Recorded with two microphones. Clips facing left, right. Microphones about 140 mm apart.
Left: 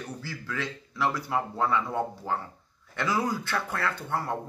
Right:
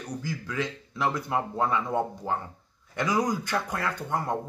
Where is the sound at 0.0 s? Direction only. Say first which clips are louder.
Right 4 dB; 15° right (ahead or behind).